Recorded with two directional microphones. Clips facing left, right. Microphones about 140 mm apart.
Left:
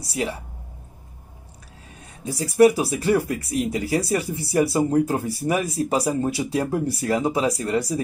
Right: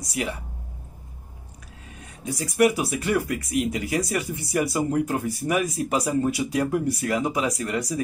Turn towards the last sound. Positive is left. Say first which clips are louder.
# left 4 dB
turn(degrees=30)  # may be behind; listen again after turning